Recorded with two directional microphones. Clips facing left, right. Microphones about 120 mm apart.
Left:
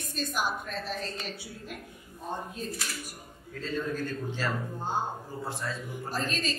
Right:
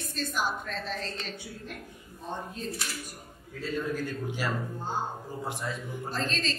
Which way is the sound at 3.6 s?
10° right (ahead or behind).